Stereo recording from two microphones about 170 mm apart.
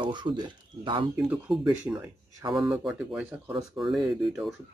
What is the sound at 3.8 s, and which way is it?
Speech, 30° right (ahead or behind).